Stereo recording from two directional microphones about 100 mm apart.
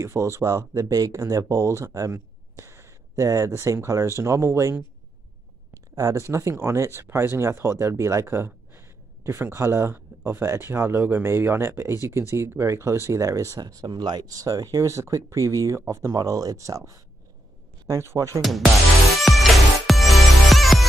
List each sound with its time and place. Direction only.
0.0 s speech: 30° right (ahead or behind)
5.9 s speech: 35° right (ahead or behind)
18.4 s speech: centre (ahead or behind)
19.1 s music: centre (ahead or behind)